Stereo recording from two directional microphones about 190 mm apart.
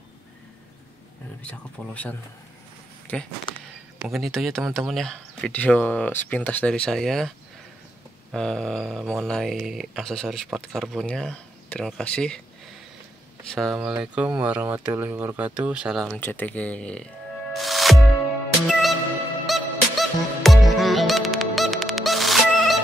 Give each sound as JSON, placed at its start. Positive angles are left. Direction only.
{"t": 1.4, "sound": "speech", "side_deg": 10}
{"t": 3.5, "sound": "a sound", "side_deg": 25}
{"t": 4.0, "sound": "speech", "side_deg": 0}
{"t": 13.5, "sound": "speech", "side_deg": 0}
{"t": 16.2, "sound": "speech", "side_deg": 10}
{"t": 17.5, "sound": "music", "side_deg": 0}